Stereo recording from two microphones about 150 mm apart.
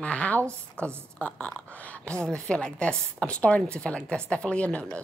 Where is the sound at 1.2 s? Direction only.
5° left (ahead or behind).